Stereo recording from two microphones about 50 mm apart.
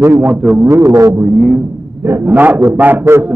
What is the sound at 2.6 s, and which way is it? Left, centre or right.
Speech, right.